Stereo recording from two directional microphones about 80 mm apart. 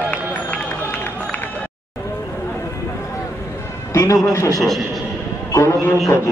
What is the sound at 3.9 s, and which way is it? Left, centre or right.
Speech, left.